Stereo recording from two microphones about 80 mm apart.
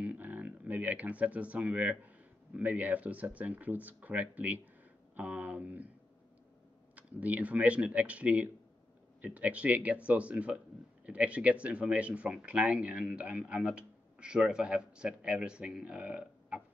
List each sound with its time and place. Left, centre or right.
0.0 s speech: centre
7.0 s speech: centre